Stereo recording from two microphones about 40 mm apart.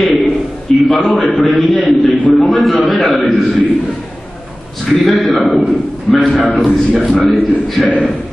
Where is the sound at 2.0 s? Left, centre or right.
Left.